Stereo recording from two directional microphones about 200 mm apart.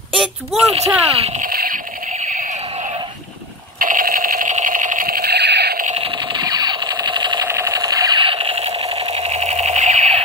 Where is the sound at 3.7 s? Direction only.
45° right (ahead or behind).